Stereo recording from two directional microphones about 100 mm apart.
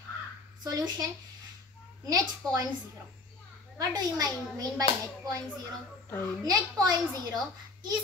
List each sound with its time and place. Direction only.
0.7 s speech: 40° right (ahead or behind)
2.0 s speech: 35° right (ahead or behind)
3.7 s speech: 40° right (ahead or behind)
6.0 s a child's voice: 25° left (ahead or behind)
6.4 s speech: 40° right (ahead or behind)